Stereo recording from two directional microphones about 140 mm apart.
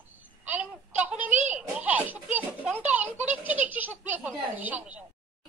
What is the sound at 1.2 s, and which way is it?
Children playing, 60° right (ahead or behind).